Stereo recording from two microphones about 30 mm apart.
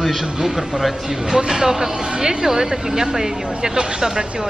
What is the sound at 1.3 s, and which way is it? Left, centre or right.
Speech, right.